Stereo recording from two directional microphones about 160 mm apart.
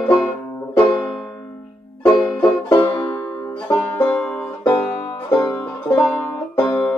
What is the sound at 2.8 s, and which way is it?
Music, 10° left (ahead or behind).